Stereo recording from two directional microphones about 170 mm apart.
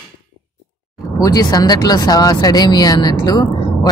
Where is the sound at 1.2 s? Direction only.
20° left (ahead or behind).